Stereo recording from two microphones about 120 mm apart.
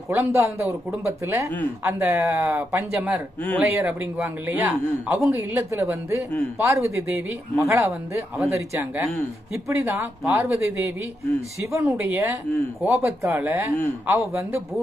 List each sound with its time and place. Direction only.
0.1 s a man's voice: 25° right (ahead or behind)